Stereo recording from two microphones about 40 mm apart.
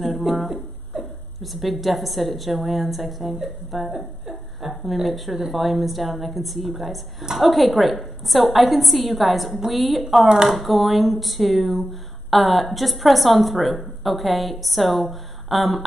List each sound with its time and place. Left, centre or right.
0.0 s a sound: centre
1.4 s a woman's voice: centre
10.2 s speech: centre
10.5 s a woman's voice: centre